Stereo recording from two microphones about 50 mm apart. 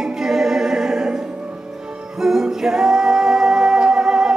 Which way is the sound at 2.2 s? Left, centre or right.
Centre.